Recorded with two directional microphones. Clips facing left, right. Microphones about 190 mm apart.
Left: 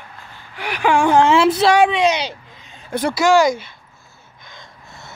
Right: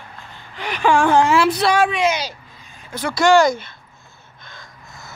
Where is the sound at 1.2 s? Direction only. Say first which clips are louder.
Left 3 dB; 25° left (ahead or behind).